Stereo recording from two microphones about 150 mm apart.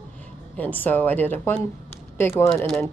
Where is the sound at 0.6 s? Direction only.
10° left (ahead or behind).